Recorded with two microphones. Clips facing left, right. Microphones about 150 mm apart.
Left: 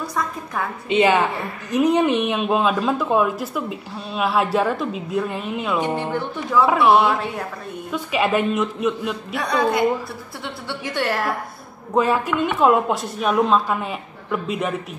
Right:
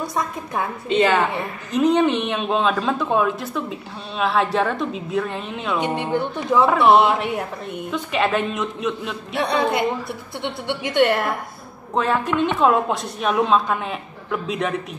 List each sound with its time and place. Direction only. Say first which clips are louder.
0.0 s a woman's voice: right 1 dB; 20° right (ahead or behind)
0.8 s speech: left 1 dB; 15° left (ahead or behind)
5.8 s a woman's voice: right 4 dB; 20° right (ahead or behind)
6.6 s speech: even; 5° left (ahead or behind)
6.9 s a woman's voice: right 1 dB; 20° right (ahead or behind)
7.9 s speech: left 1 dB; 10° left (ahead or behind)
9.4 s a woman's voice: left 1 dB; 25° right (ahead or behind)
11.9 s speech: left 2 dB; 5° left (ahead or behind)